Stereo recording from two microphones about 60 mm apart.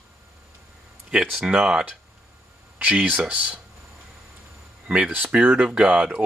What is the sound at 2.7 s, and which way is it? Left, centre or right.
Speech, right.